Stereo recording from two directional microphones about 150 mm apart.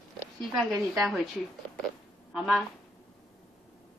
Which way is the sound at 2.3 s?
Centre (ahead or behind).